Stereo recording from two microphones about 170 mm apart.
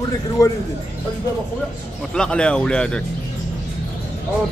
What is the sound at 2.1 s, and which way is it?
Speech, 5° left (ahead or behind).